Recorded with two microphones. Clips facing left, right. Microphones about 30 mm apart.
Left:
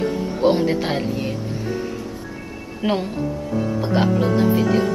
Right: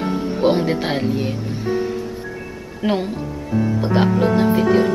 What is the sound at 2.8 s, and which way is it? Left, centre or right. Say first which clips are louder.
Speech: right 1 dB; centre.